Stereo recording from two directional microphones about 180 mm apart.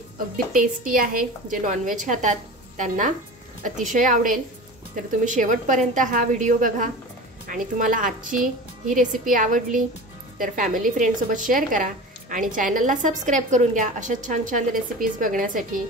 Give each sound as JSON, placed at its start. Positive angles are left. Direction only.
{"t": 0.5, "sound": "a woman's voice", "side_deg": -50}
{"t": 3.9, "sound": "a woman's voice", "side_deg": -45}